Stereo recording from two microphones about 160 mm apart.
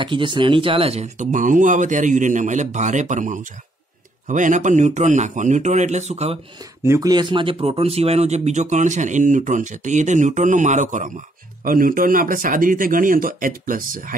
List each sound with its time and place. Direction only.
0.0 s speech: 30° right (ahead or behind)
6.8 s speech: 20° right (ahead or behind); by 14.1 s 60° right (ahead or behind)